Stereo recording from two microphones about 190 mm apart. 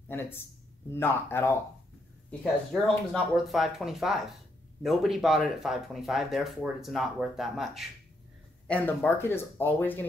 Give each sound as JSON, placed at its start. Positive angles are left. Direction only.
{"t": 0.1, "sound": "speech", "side_deg": 10}
{"t": 2.7, "sound": "speech", "side_deg": 0}